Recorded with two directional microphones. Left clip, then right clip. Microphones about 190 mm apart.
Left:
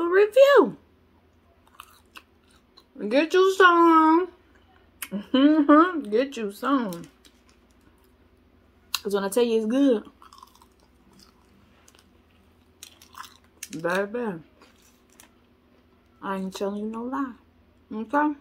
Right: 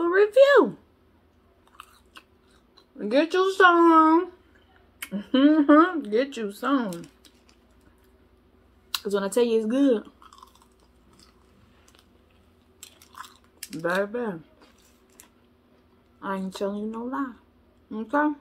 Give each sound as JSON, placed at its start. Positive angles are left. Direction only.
{"t": 0.0, "sound": "a sound", "side_deg": 15}
{"t": 1.8, "sound": "chewing", "side_deg": 15}
{"t": 2.7, "sound": "speech", "side_deg": 15}
{"t": 8.9, "sound": "speech", "side_deg": 10}
{"t": 13.2, "sound": "chewing", "side_deg": 15}
{"t": 13.7, "sound": "speech", "side_deg": 10}
{"t": 16.2, "sound": "speech", "side_deg": 15}